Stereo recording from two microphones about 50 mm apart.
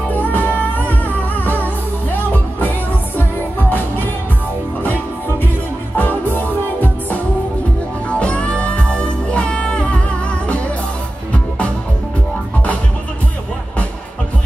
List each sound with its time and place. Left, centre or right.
0.2 s music: left
5.9 s music: left
8.1 s music: left
11.3 s music: left